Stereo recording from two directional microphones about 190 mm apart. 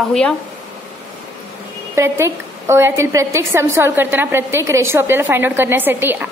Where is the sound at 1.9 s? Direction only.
15° right (ahead or behind).